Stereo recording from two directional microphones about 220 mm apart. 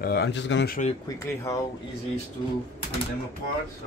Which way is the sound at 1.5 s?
15° left (ahead or behind).